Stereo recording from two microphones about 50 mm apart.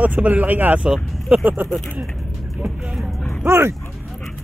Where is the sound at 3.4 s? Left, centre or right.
Right.